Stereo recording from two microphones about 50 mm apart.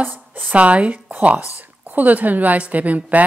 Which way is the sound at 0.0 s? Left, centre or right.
Right.